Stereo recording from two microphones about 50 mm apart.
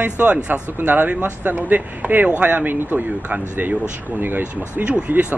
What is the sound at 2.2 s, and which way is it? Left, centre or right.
Speech, right.